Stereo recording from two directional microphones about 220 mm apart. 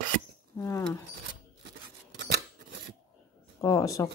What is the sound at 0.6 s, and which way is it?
Speech, 10° left (ahead or behind).